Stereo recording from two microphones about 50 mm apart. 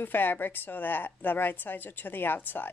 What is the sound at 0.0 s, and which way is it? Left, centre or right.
A woman's voice, left.